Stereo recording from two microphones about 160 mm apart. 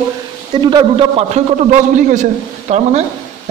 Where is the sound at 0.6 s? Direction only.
35° right (ahead or behind).